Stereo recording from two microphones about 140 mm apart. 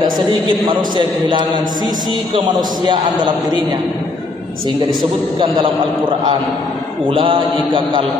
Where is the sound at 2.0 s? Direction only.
40° right (ahead or behind).